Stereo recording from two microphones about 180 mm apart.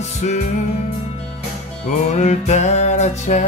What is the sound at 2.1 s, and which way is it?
Music, 40° left (ahead or behind).